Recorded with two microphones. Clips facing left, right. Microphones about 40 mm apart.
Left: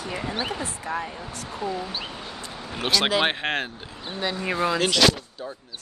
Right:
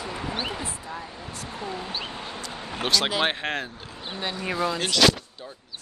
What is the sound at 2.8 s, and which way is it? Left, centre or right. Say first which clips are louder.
Speech: left 1 dB; centre.